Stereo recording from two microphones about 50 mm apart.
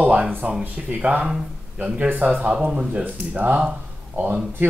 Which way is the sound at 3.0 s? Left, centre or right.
Right.